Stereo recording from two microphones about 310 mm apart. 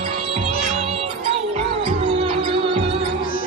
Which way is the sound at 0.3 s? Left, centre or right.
Centre.